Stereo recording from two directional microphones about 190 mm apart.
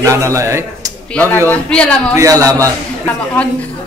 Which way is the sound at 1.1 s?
10° left (ahead or behind).